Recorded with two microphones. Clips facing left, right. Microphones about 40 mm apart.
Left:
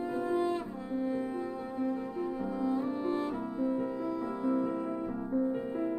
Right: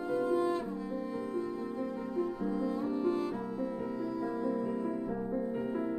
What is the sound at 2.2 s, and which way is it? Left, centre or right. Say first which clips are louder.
Music: right 4 dB; left.